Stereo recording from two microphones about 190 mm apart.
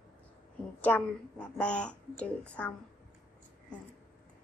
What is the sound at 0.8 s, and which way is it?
A woman's voice, 10° left (ahead or behind).